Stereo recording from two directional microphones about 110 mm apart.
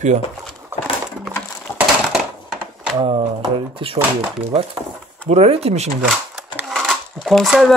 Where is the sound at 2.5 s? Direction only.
5° right (ahead or behind).